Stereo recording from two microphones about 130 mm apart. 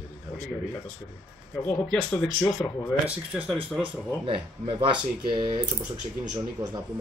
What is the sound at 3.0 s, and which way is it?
Speech, 10° right (ahead or behind).